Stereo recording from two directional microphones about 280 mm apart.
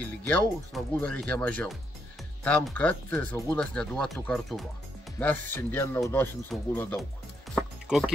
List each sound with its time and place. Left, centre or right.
0.3 s speech: centre